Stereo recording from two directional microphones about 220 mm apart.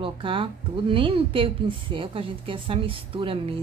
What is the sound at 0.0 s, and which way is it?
Speech, 25° right (ahead or behind).